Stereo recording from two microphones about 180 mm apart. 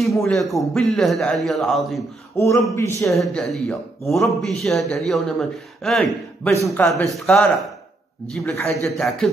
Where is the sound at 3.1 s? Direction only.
Centre (ahead or behind).